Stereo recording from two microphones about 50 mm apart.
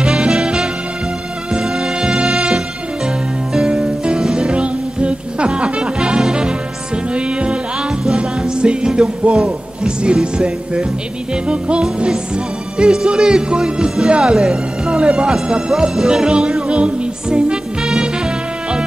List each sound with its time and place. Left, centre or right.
0.0 s music: centre
12.7 s speech: centre
15.3 s music: centre